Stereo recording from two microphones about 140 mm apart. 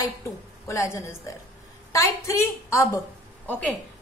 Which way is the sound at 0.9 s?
20° left (ahead or behind).